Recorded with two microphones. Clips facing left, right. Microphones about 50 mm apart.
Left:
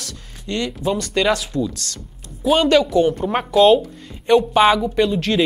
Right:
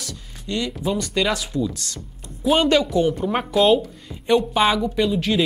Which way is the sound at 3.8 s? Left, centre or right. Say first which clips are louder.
Left 2 dB; centre.